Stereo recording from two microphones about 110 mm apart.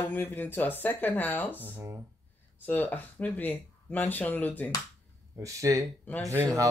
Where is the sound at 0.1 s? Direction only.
15° left (ahead or behind).